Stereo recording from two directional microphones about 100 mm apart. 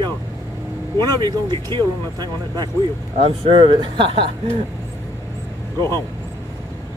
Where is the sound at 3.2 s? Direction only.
60° right (ahead or behind).